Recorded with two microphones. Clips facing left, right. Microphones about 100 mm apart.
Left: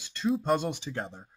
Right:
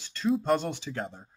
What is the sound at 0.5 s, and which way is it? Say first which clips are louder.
Speech: right 1 dB; 15° left (ahead or behind).